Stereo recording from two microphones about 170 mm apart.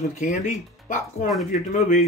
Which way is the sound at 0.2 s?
50° left (ahead or behind).